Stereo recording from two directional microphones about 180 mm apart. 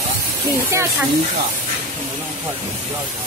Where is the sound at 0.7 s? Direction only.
15° right (ahead or behind).